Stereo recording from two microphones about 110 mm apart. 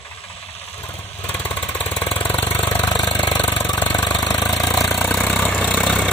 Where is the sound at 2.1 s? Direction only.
15° left (ahead or behind).